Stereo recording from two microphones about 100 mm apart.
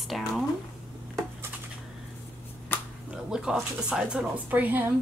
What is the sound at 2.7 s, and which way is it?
Finger snapping, 20° left (ahead or behind).